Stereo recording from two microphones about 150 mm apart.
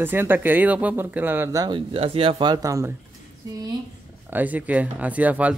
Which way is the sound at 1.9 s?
40° right (ahead or behind).